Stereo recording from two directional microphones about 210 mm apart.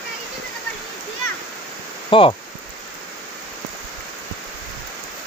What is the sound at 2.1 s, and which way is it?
Speech, 25° left (ahead or behind).